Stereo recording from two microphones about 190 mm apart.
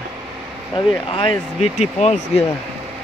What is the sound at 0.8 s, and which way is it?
Speech, 25° left (ahead or behind).